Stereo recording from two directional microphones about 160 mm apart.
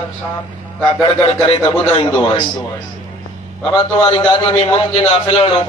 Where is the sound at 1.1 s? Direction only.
35° left (ahead or behind).